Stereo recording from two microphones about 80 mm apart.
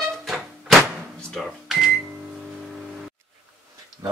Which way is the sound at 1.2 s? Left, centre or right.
Centre.